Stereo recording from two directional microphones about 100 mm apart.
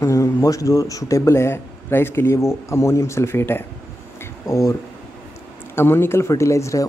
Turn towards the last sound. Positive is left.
turn(degrees=30)  # may be behind; listen again after turning